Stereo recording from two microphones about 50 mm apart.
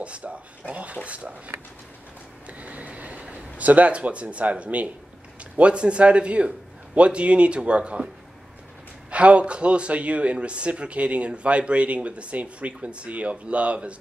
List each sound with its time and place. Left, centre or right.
0.0 s speech: right
2.4 s speech: right
9.1 s speech: right